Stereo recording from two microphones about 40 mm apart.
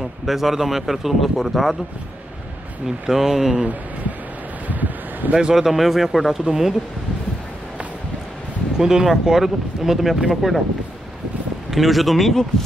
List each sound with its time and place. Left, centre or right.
0.3 s speech: centre
3.1 s speech: centre
4.6 s wind: right
5.3 s speech: centre
8.7 s speech: centre
11.7 s speech: centre